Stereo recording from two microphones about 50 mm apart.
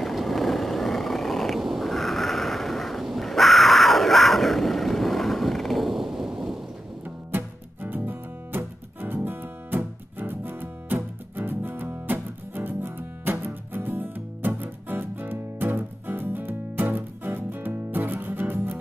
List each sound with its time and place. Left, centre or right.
0.0 s vehicle: centre
7.3 s music: right